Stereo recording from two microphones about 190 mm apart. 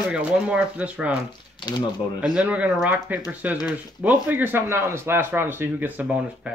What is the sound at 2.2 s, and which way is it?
Speech, 5° right (ahead or behind).